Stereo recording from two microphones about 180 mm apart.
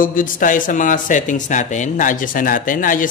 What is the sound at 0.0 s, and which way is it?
A man's voice, 50° left (ahead or behind).